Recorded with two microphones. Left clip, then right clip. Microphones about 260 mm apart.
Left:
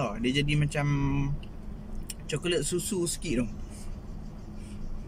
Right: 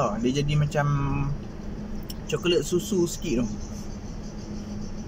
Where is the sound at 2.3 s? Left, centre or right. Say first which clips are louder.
Right 6 dB; right.